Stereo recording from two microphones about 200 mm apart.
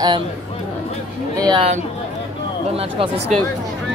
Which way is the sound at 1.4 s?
25° right (ahead or behind).